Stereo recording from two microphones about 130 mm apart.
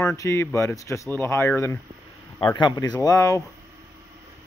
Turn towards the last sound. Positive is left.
turn(degrees=25)  # may be behind; listen again after turning